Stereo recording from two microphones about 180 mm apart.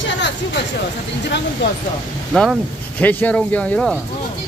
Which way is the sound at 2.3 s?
Centre (ahead or behind).